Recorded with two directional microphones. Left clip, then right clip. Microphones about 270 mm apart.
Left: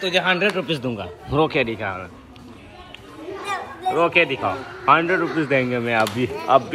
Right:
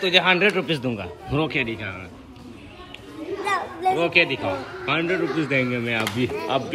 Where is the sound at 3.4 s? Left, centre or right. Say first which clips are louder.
Right 3 dB; centre.